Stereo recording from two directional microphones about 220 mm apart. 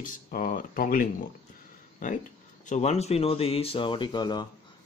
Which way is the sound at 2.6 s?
30° left (ahead or behind).